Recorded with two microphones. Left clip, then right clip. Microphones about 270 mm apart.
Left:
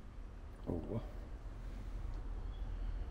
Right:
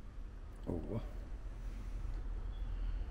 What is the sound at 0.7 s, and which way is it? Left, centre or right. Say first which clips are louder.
Speech: even; right.